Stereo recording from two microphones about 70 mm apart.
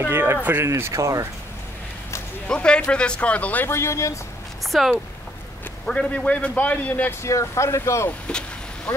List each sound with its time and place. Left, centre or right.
0.1 s speech: right
0.7 s speech: right
2.4 s a man's voice: centre
3.6 s speech: left
4.6 s speech: centre
5.9 s a man's voice: centre
7.1 s speech: left
8.3 s a man's voice: centre